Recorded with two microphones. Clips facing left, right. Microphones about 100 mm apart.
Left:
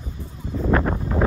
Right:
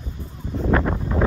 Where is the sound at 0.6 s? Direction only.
5° left (ahead or behind).